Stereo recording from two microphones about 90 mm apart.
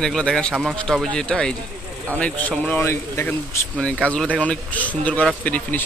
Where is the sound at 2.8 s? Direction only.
30° left (ahead or behind).